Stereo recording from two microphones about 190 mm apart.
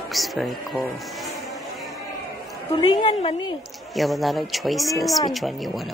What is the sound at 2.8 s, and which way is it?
Speech, 25° left (ahead or behind).